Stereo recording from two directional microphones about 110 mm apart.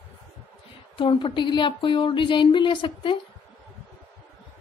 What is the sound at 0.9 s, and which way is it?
Speech, 50° left (ahead or behind).